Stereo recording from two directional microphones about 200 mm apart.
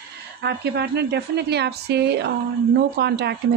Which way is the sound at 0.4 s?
55° right (ahead or behind).